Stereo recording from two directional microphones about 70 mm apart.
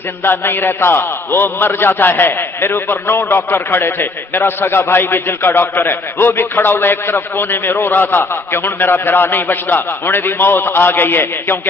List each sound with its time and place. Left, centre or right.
0.2 s a man's voice: left